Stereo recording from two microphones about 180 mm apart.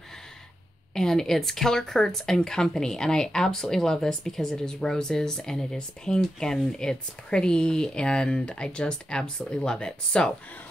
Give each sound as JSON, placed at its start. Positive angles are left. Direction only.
{"t": 0.9, "sound": "speech", "side_deg": 0}